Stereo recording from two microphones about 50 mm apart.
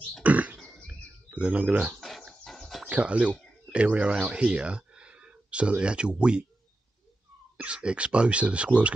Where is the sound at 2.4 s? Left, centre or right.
Centre.